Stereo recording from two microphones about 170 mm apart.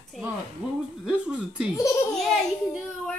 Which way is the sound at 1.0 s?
5° right (ahead or behind).